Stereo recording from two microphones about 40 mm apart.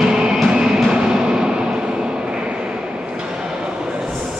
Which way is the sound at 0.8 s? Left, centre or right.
Centre.